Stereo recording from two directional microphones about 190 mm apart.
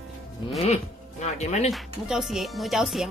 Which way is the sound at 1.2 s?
35° left (ahead or behind).